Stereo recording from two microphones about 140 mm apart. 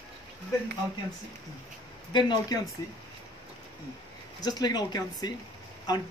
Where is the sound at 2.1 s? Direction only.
30° left (ahead or behind).